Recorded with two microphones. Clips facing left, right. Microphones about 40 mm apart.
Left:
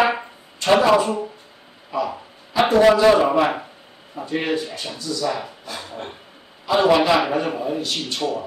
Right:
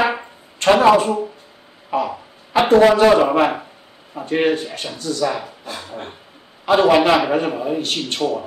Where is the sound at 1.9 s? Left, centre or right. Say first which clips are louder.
Right 3 dB; right.